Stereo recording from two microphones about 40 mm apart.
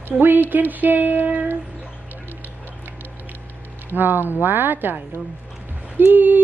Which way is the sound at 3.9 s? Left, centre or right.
Right.